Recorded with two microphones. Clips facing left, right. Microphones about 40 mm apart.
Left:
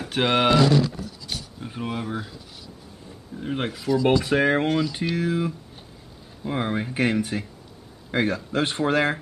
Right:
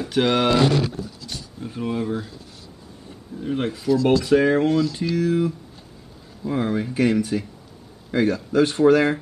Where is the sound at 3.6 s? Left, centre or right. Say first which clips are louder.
Right 5 dB; left.